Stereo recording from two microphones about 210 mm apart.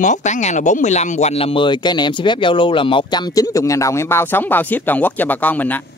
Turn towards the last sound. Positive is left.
turn(degrees=10)  # may be behind; listen again after turning